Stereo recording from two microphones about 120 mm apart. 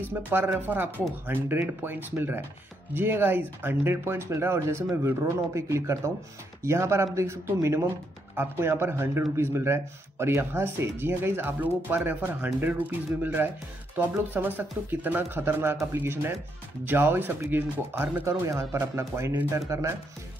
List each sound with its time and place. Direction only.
0.0 s speech: 15° right (ahead or behind)